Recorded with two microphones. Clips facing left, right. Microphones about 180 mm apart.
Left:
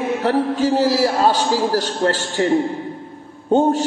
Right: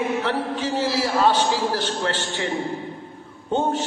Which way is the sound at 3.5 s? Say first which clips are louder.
Left 7 dB; 40° left (ahead or behind).